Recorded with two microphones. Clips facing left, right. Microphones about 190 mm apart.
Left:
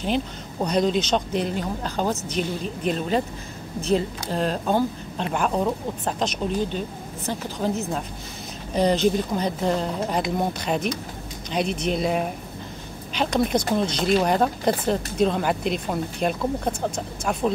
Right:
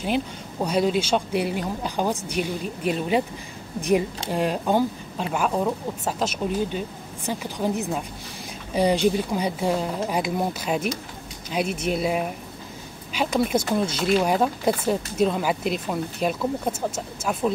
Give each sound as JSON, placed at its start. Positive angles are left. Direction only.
{"t": 0.0, "sound": "speech", "side_deg": -5}